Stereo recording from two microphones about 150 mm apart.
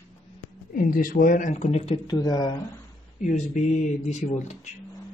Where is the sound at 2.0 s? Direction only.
25° left (ahead or behind).